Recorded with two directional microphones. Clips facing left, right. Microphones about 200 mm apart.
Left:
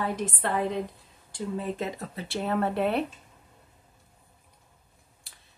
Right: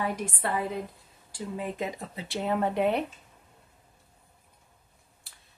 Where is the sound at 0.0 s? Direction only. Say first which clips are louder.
Left 1 dB; 10° right (ahead or behind).